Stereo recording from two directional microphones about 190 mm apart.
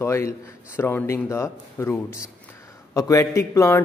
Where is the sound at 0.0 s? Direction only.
15° left (ahead or behind).